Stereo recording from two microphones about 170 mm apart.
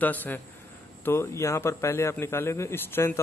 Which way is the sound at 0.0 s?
10° left (ahead or behind).